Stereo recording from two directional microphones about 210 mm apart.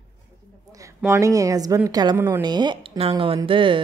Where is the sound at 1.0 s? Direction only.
15° right (ahead or behind).